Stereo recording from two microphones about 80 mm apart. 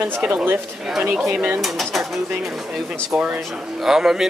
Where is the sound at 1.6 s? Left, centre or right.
Centre.